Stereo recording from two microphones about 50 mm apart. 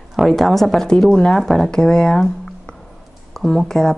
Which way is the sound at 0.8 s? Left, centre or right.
Centre.